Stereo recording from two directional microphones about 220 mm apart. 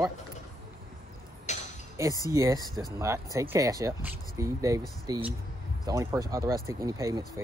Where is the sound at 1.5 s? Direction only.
30° left (ahead or behind).